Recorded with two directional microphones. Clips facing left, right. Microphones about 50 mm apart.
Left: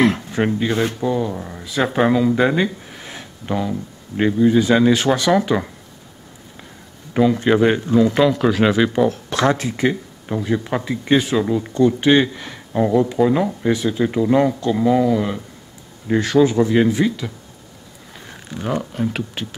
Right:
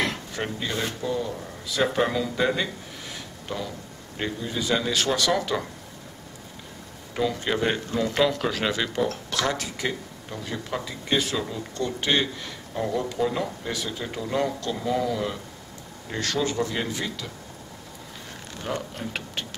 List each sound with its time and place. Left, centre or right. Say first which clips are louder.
0.0 s speech: left 11 dB; left
7.2 s speech: left 10 dB; left
7.9 s speech: left 7 dB; centre
9.3 s speech: left 9 dB; left
18.5 s speech: left 8 dB; centre